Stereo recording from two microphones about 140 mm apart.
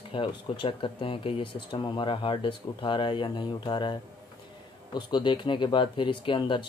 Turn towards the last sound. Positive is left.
turn(degrees=35)  # may be behind; listen again after turning